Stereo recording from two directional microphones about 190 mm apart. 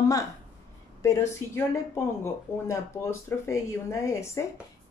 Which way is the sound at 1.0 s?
15° left (ahead or behind).